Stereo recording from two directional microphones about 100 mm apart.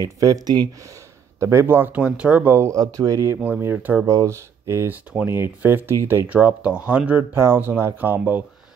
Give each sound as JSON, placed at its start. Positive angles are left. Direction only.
{"t": 0.0, "sound": "speech", "side_deg": -35}
{"t": 1.4, "sound": "speech", "side_deg": -25}
{"t": 3.3, "sound": "speech", "side_deg": -20}
{"t": 4.0, "sound": "speech", "side_deg": -30}